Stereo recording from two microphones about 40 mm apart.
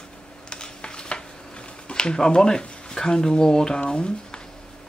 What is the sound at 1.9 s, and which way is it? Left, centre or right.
Speech, left.